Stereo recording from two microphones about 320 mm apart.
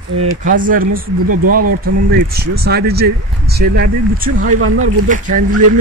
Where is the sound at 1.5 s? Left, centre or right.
Right.